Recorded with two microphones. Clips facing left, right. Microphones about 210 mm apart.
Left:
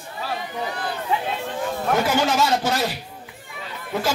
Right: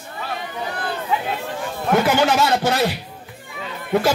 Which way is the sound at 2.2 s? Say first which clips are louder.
Right 3 dB; 60° right (ahead or behind).